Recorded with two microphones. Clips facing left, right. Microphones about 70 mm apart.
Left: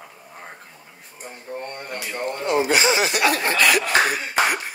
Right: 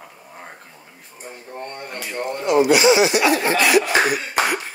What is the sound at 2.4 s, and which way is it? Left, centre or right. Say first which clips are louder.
Speech: right 5 dB; left.